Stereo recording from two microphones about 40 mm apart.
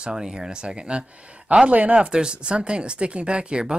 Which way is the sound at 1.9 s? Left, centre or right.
Right.